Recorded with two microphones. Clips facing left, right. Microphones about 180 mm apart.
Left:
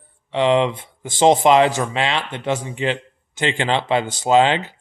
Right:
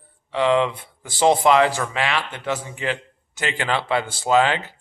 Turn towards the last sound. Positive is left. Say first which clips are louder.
# left 3 dB
turn(degrees=20)  # may be behind; listen again after turning